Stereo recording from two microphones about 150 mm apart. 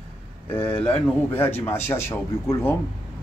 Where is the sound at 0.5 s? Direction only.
10° left (ahead or behind).